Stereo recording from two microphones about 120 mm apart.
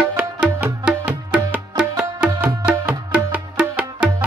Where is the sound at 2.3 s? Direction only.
20° right (ahead or behind).